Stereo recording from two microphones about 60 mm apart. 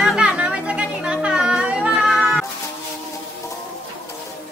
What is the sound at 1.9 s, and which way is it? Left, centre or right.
Female singing, centre.